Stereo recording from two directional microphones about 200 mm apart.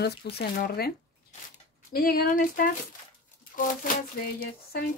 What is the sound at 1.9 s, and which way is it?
Speech, 50° left (ahead or behind).